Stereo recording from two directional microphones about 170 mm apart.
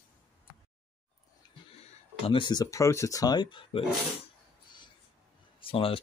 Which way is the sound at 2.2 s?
30° left (ahead or behind).